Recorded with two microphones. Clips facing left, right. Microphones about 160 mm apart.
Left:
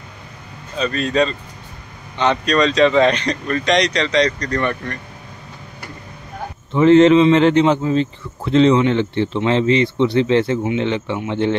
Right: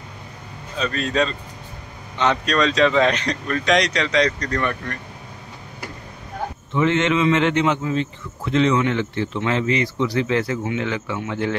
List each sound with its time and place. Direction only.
0.7 s speech: centre (ahead or behind)
6.7 s a man's voice: 35° left (ahead or behind)